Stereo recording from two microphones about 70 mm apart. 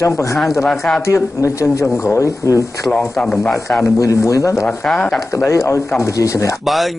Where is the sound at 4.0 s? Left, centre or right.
Left.